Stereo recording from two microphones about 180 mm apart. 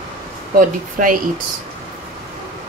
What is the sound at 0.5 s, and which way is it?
Speech, 50° right (ahead or behind).